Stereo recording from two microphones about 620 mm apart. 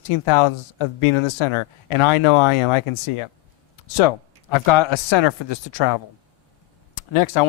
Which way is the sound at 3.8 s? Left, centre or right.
Left.